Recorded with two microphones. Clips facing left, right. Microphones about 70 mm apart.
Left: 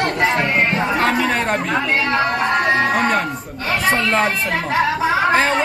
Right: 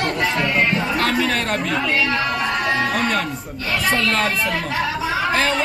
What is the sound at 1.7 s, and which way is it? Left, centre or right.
Speech, left.